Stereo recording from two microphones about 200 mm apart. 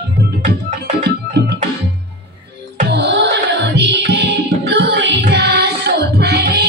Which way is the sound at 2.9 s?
60° right (ahead or behind).